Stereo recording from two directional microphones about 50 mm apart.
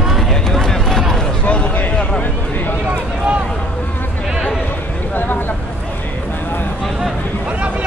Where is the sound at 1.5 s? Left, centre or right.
Left.